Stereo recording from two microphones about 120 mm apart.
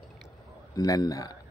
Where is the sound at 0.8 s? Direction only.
30° left (ahead or behind).